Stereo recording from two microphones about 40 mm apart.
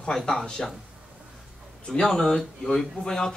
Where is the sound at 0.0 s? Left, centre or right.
Centre.